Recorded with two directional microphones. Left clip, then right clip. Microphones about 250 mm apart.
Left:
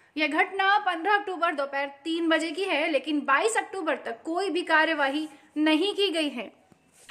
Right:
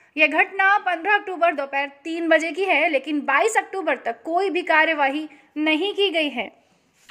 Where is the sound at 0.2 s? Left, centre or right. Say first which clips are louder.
Right 7 dB; centre.